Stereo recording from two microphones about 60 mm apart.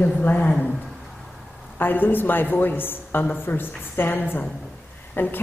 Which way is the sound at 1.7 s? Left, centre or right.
Left.